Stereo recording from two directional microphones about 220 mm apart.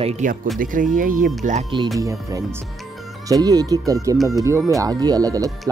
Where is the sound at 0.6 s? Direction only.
35° right (ahead or behind).